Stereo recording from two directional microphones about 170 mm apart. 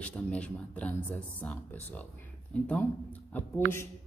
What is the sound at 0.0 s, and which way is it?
Speech, 5° left (ahead or behind).